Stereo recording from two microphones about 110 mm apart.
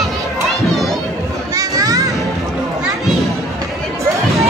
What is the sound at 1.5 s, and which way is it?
Children playing, 30° right (ahead or behind).